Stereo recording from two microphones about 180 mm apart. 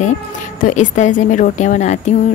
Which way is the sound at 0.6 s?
45° left (ahead or behind).